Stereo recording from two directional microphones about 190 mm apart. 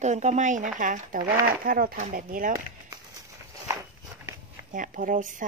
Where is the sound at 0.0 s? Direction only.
40° right (ahead or behind).